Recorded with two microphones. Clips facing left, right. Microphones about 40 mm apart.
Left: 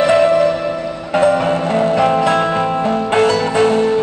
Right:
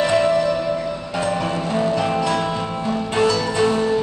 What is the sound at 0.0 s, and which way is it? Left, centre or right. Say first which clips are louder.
Music: left 6 dB; left.